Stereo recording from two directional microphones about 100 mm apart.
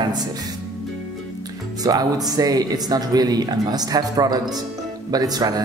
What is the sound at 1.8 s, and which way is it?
Speech, 40° right (ahead or behind).